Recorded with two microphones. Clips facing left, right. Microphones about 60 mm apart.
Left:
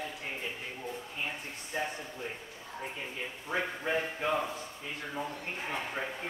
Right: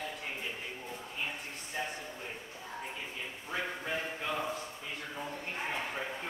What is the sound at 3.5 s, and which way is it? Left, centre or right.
Speech, centre.